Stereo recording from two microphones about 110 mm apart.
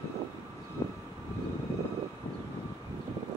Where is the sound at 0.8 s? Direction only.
30° left (ahead or behind).